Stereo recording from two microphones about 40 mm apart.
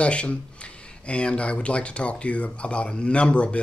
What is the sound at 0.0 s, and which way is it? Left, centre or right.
Speech, left.